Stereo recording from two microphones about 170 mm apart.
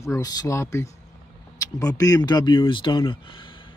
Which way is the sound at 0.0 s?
20° left (ahead or behind).